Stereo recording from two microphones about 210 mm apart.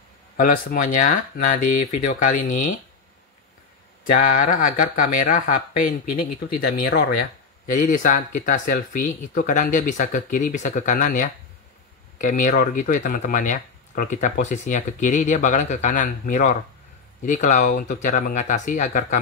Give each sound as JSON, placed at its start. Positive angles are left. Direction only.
{"t": 0.4, "sound": "speech", "side_deg": 40}
{"t": 4.0, "sound": "speech", "side_deg": 40}